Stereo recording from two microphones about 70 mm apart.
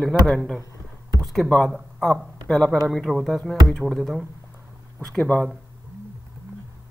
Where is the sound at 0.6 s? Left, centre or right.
Right.